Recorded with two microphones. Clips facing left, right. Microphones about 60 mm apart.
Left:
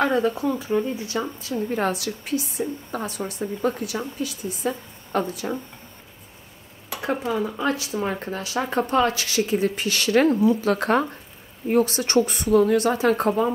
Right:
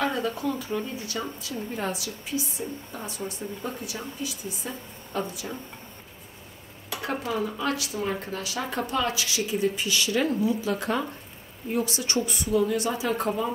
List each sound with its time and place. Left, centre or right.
0.0 s speech: left
0.3 s speech: left
1.7 s a woman's voice: left
6.9 s speech: left
10.3 s a woman's voice: left